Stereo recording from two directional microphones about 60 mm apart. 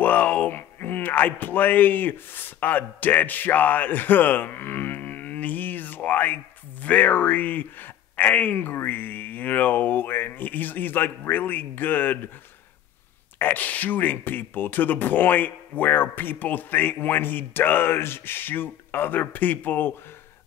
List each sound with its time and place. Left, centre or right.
0.0 s speech: left
13.4 s speech: left